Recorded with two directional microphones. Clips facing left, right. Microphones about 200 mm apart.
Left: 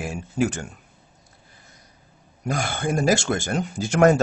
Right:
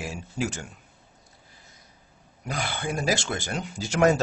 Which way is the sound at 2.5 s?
45° left (ahead or behind).